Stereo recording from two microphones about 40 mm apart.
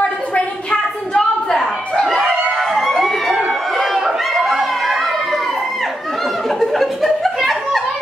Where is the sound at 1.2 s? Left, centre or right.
Centre.